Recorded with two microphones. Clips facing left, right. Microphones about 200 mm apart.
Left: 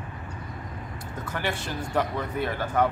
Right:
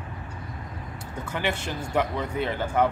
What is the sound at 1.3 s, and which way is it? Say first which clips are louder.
Speech: right 2 dB; 20° right (ahead or behind).